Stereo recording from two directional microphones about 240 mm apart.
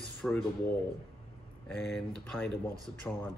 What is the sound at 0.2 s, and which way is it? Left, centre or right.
Speech, centre.